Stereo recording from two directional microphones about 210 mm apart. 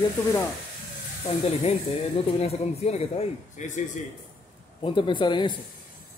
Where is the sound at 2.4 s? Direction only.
30° left (ahead or behind).